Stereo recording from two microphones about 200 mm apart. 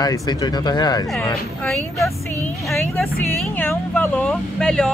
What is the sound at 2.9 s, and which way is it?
Speech, centre (ahead or behind).